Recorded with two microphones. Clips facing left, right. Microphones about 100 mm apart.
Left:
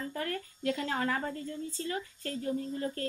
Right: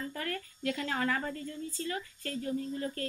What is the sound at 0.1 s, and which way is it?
A woman's voice, 25° left (ahead or behind).